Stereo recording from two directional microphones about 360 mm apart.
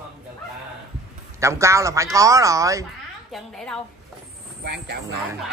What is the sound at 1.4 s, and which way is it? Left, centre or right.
Speech, centre.